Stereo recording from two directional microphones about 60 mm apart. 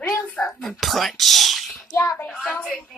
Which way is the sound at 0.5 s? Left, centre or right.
Centre.